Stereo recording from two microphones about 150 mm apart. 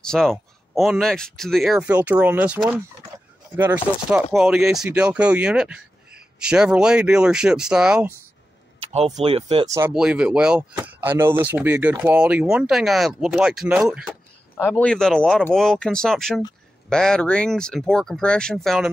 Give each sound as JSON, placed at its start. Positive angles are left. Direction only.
{"t": 0.0, "sound": "speech", "side_deg": 5}
{"t": 9.2, "sound": "speech", "side_deg": -40}
{"t": 9.7, "sound": "speech", "side_deg": -20}
{"t": 9.9, "sound": "speech", "side_deg": -5}